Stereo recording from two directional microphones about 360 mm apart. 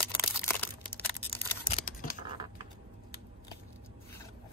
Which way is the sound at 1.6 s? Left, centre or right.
Centre.